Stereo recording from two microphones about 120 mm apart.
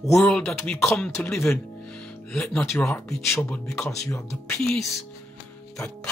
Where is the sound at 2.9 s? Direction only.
25° left (ahead or behind).